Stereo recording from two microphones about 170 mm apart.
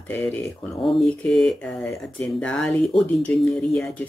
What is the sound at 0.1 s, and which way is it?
Speech, 10° left (ahead or behind).